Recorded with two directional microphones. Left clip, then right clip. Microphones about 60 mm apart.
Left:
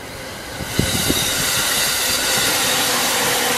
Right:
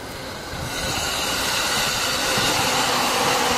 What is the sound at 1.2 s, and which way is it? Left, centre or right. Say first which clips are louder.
Train: left 3 dB; left.